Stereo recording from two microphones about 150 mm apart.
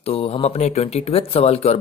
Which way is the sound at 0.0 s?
40° left (ahead or behind).